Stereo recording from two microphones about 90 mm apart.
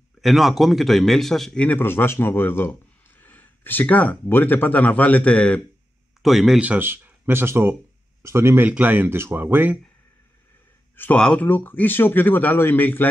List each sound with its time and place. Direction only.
0.2 s a man's voice: centre (ahead or behind)
1.8 s a man's voice: 25° left (ahead or behind)
6.2 s a man's voice: centre (ahead or behind)
6.6 s speech: 20° right (ahead or behind)
8.6 s speech: 20° right (ahead or behind)
11.1 s speech: 10° left (ahead or behind)
11.4 s a man's voice: 20° left (ahead or behind)